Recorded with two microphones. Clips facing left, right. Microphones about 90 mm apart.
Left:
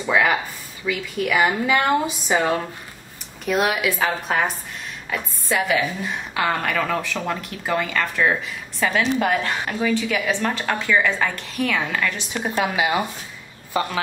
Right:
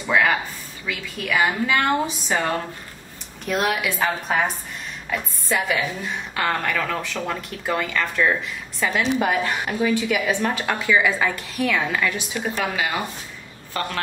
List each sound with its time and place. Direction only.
0.0 s a sound: 10° left (ahead or behind)
0.8 s a woman's voice: 10° left (ahead or behind)
9.1 s a woman's voice: 10° right (ahead or behind)
12.5 s a woman's voice: 20° left (ahead or behind)